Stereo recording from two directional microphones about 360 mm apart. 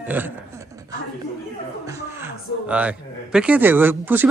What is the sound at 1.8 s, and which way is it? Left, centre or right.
Speech, centre.